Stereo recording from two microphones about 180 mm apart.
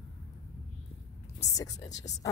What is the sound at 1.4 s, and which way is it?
Speech, 20° left (ahead or behind).